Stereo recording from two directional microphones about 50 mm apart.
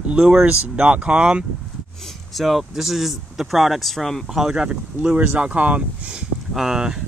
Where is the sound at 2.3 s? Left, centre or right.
Centre.